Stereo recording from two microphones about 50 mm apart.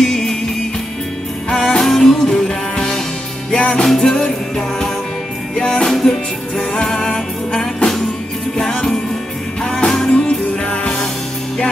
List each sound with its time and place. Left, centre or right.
0.0 s music: centre
1.5 s music: left
3.8 s music: centre
10.1 s music: left